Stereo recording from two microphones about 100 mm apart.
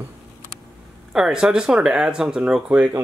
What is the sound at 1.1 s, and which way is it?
Speech, 5° right (ahead or behind).